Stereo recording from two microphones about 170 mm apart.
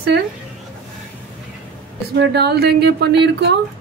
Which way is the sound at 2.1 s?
75° right (ahead or behind).